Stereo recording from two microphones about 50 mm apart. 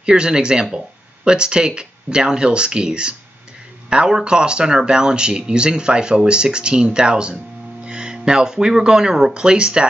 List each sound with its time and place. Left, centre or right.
0.0 s speech: centre